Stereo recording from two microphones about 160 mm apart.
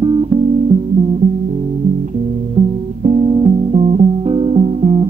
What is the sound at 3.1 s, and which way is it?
Music, 45° right (ahead or behind).